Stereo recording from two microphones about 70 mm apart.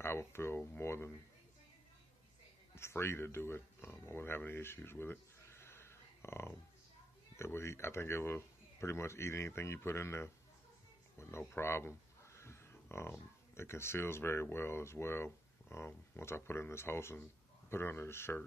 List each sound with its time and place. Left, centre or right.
0.0 s a sound: left
0.7 s speech: left
2.7 s speech: left